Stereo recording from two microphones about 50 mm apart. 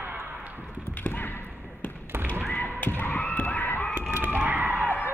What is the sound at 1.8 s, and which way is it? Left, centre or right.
Basketball bounce, left.